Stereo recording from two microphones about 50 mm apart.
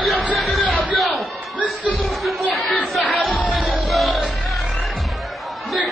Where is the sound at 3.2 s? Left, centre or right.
Centre.